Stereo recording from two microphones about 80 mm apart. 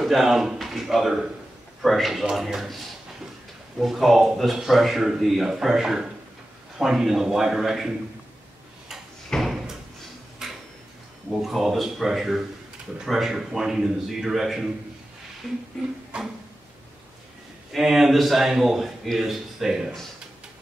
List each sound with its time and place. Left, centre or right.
0.0 s a man's voice: centre
9.3 s door: centre
10.4 s tick-tock: centre
11.3 s a man's voice: centre
15.7 s a sound: centre
16.1 s music: centre
17.7 s a man's voice: centre